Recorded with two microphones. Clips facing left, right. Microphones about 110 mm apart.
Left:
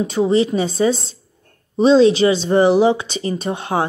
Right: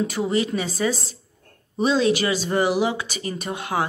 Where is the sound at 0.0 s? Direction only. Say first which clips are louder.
Left 7 dB; 25° left (ahead or behind).